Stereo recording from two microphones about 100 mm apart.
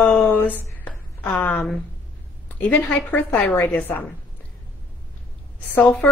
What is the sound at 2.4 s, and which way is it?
A woman's voice, 15° left (ahead or behind).